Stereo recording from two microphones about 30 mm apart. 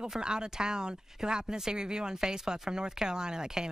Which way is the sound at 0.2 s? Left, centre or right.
Right.